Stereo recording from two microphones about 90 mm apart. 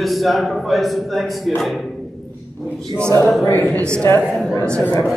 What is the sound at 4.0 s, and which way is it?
Speech, 20° left (ahead or behind).